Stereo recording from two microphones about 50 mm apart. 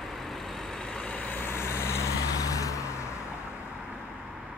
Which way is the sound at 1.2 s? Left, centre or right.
Left.